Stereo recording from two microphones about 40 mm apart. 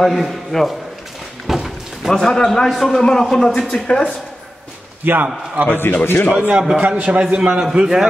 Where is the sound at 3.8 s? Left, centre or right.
Left.